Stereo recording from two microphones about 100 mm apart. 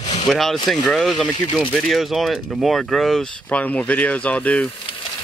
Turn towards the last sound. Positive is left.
turn(degrees=15)  # may be behind; listen again after turning